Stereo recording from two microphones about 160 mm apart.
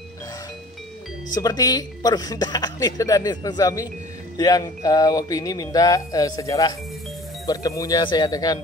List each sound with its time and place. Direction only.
1.3 s a woman's voice: 25° left (ahead or behind)